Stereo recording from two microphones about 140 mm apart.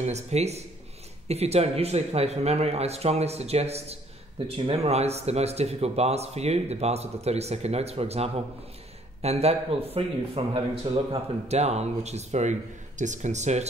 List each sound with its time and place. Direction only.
0.0 s a man's voice: 50° right (ahead or behind)